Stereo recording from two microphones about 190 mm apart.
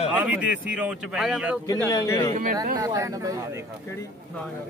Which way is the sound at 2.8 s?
15° right (ahead or behind).